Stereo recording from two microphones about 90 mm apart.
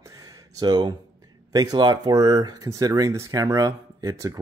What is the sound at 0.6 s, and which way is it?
Speech, 50° right (ahead or behind).